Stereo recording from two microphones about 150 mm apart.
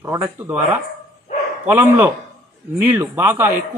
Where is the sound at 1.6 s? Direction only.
15° right (ahead or behind).